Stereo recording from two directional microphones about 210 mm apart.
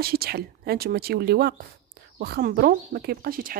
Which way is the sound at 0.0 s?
45° right (ahead or behind).